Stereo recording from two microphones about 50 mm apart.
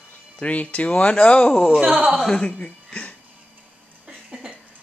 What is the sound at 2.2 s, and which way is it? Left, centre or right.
Speech, centre.